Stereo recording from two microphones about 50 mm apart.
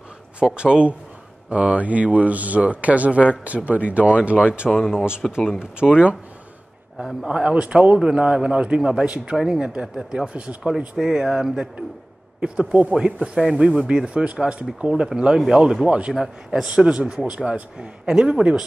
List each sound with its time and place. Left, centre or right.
0.4 s a man's voice: centre
4.6 s speech: centre
4.9 s a man's voice: centre
7.2 s a man's voice: centre
11.0 s speech: centre
12.4 s a man's voice: right